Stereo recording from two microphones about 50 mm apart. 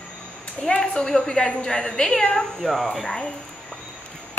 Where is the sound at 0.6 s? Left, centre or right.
Centre.